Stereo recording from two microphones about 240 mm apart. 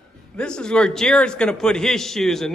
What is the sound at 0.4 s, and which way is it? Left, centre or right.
A man's voice, centre.